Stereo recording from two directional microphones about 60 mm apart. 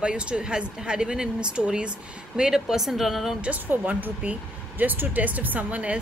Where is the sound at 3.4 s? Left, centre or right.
Right.